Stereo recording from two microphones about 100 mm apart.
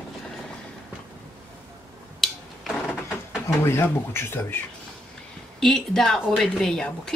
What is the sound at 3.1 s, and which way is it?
Speech, 25° left (ahead or behind).